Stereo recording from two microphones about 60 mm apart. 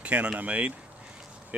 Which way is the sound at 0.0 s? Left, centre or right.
Right.